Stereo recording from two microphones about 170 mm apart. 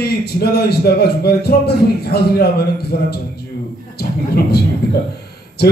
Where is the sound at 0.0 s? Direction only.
70° left (ahead or behind).